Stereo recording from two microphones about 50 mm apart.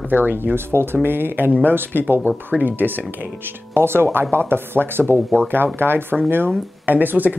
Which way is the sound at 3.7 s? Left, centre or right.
Right.